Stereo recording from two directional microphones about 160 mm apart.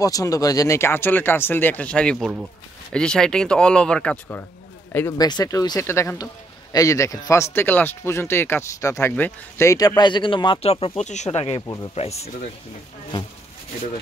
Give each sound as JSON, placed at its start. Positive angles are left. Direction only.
{"t": 0.0, "sound": "speech", "side_deg": 20}
{"t": 4.9, "sound": "speech", "side_deg": 20}
{"t": 11.6, "sound": "speech", "side_deg": 20}
{"t": 11.9, "sound": "speech", "side_deg": 40}